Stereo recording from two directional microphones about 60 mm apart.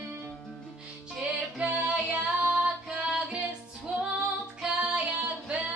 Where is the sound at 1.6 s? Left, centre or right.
Centre.